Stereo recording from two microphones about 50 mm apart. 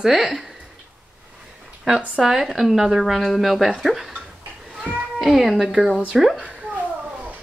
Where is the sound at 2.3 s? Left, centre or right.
Centre.